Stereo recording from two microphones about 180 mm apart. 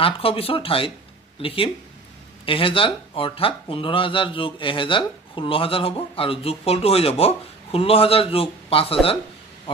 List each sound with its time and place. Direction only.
0.0 s speech: 30° left (ahead or behind)